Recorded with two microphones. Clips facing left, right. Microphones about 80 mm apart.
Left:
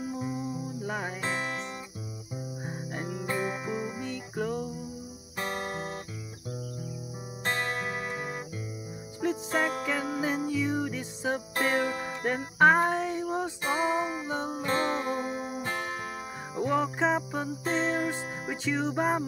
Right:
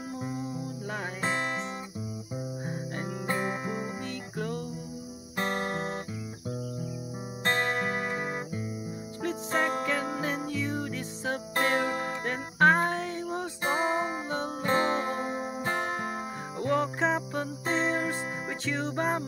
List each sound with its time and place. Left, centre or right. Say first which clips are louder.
0.0 s music: left 2 dB; centre
1.2 s music: right 5 dB; right
2.6 s music: right 1 dB; centre
3.3 s music: right 1 dB; right
3.6 s music: left 1 dB; centre
4.0 s music: left 2 dB; centre
5.5 s music: right 2 dB; centre
8.1 s music: right 3 dB; right
9.2 s music: left 1 dB; centre
12.3 s music: left 2 dB; centre
13.7 s music: right 1 dB; centre
14.7 s music: right 2 dB; right
16.5 s music: left 1 dB; centre